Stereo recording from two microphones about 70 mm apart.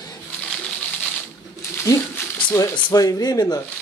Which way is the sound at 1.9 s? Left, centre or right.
Left.